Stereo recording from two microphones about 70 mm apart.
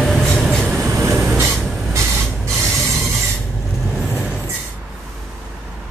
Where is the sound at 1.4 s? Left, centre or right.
Right.